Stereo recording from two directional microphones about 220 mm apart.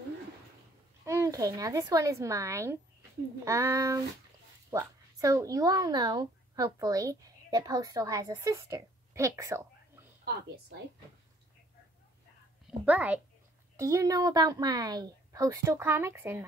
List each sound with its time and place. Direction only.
1.0 s a woman's voice: 15° right (ahead or behind)
12.8 s a woman's voice: 5° right (ahead or behind)